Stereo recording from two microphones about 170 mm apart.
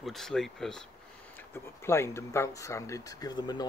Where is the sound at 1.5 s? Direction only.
15° left (ahead or behind).